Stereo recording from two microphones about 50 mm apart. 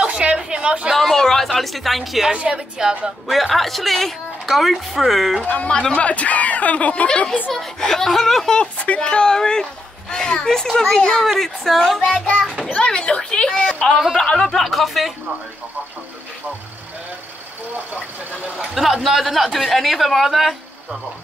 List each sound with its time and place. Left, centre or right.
0.0 s a sound: right
0.9 s a woman's voice: centre
2.3 s a woman's voice: right
3.3 s a woman's voice: centre
5.9 s speech: left
7.5 s speech: centre
8.5 s a woman's voice: left; by 12.1 s centre
12.1 s speech: centre
13.9 s a woman's voice: centre
18.8 s a woman's voice: centre